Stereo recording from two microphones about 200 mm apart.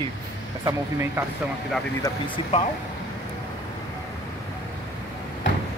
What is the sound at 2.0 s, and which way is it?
Speech, 25° left (ahead or behind).